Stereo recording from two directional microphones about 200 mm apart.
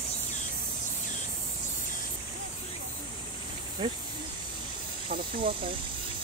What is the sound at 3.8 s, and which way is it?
Speech, 25° right (ahead or behind).